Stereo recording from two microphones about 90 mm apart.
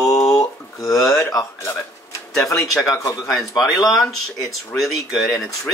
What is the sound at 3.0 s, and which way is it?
Speech, 40° left (ahead or behind).